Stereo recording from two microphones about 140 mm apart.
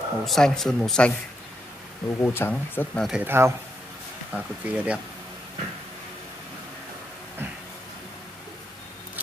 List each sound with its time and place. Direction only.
0.2 s speech: centre (ahead or behind)
2.0 s speech: 20° left (ahead or behind)
3.0 s speech: 5° right (ahead or behind)
3.3 s speech: 20° right (ahead or behind)